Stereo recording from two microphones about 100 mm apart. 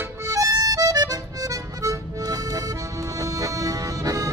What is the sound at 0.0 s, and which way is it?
Music, 30° right (ahead or behind).